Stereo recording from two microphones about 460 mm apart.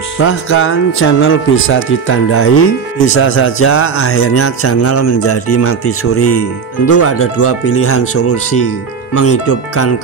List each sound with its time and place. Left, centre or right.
0.2 s speech: left